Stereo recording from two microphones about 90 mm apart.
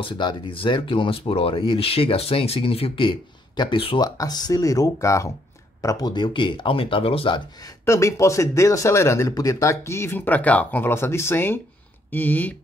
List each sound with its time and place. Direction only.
0.0 s speech: 60° left (ahead or behind)
4.0 s speech: 50° left (ahead or behind); by 7.4 s 80° left
7.8 s speech: 35° left (ahead or behind)